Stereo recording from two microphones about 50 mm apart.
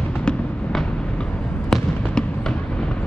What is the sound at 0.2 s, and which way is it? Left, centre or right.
Fireworks, centre.